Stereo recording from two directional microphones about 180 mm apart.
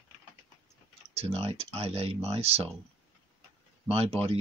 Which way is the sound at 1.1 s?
30° right (ahead or behind).